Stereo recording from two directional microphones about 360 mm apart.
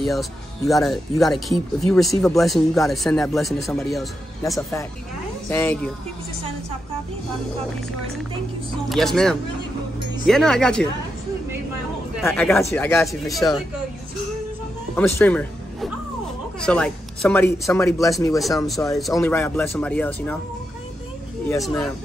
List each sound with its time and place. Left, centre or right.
0.0 s speech: centre
8.8 s speech: centre
12.2 s speech: centre
15.0 s speech: centre
21.5 s speech: centre